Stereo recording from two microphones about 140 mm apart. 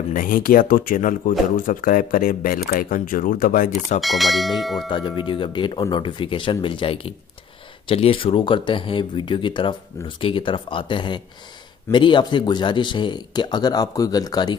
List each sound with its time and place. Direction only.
0.1 s speech: 75° left (ahead or behind)
4.0 s speech: centre (ahead or behind)
4.8 s speech: 35° left (ahead or behind)